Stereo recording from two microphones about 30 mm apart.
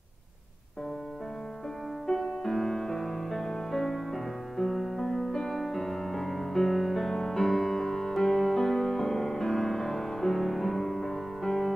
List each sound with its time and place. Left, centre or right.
2.1 s music: centre